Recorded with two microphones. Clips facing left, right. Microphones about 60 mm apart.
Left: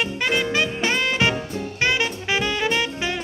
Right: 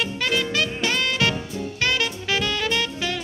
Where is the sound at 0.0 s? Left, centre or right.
Left.